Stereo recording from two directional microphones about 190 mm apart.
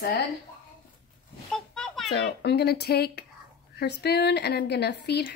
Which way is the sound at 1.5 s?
5° left (ahead or behind).